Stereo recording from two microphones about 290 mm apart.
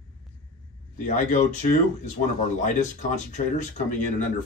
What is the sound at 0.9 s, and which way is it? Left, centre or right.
Speech, left.